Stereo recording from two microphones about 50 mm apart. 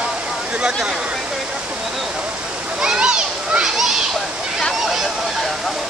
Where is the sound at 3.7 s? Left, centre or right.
Centre.